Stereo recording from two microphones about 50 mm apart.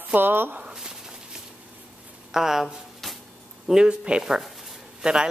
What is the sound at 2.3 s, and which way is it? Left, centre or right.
Speech, centre.